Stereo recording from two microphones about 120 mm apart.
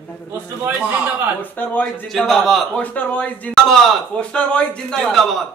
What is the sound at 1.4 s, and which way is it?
Speech, 15° left (ahead or behind).